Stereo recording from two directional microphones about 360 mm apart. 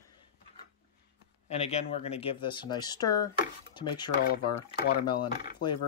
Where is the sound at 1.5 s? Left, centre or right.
Centre.